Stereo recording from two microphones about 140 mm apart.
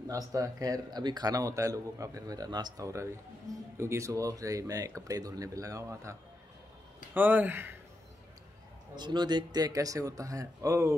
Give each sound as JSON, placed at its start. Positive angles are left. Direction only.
{"t": 0.1, "sound": "speech", "side_deg": -25}
{"t": 7.2, "sound": "speech", "side_deg": -15}
{"t": 8.9, "sound": "speech", "side_deg": -30}